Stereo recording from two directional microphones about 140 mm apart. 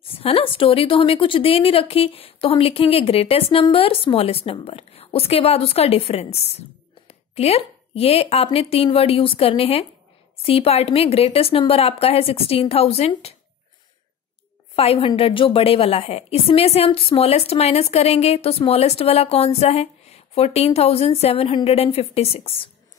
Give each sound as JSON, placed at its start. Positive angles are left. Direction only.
{"t": 0.2, "sound": "a woman's voice", "side_deg": 45}
{"t": 14.8, "sound": "a woman's voice", "side_deg": 45}